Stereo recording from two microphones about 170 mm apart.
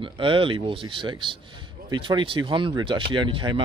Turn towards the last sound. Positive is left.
turn(degrees=-30)  # may be behind; listen again after turning